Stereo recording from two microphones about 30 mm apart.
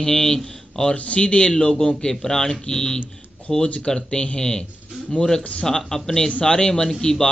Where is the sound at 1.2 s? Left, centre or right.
Left; by 6.3 s centre.